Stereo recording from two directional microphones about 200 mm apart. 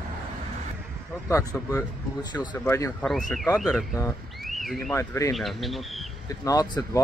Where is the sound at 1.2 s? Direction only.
15° left (ahead or behind).